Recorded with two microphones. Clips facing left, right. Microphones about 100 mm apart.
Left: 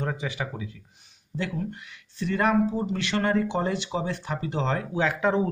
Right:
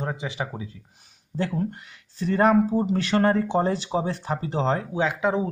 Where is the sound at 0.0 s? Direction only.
25° right (ahead or behind).